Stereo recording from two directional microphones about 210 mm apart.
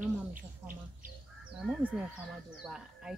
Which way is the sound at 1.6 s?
5° right (ahead or behind).